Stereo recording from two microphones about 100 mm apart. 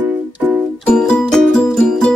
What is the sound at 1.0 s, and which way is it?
Music, 5° left (ahead or behind).